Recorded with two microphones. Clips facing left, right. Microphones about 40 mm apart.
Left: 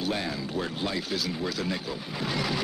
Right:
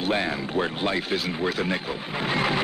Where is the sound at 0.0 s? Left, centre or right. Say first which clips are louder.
Right 5 dB; right.